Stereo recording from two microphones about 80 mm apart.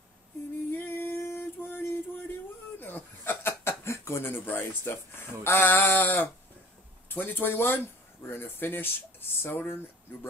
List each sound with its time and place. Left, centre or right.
0.7 s music: left
2.8 s a sound: left
7.1 s speech: left